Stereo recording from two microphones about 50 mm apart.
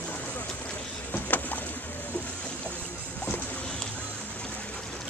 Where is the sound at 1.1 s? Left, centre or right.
Left.